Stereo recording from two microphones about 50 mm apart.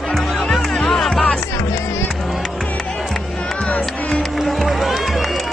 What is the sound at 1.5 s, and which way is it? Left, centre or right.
Music, left.